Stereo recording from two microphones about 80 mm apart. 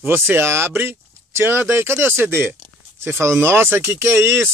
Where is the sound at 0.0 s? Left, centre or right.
Right.